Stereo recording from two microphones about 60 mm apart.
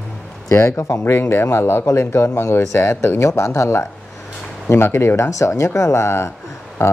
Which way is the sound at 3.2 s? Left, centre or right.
Left.